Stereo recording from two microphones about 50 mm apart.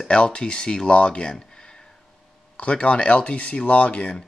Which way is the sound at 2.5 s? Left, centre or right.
Left.